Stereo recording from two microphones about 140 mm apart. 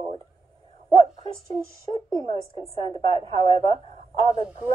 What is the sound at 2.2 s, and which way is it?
Speech, 30° left (ahead or behind).